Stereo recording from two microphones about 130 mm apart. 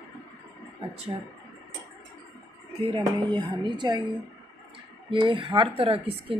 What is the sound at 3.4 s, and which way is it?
Speech, 35° right (ahead or behind).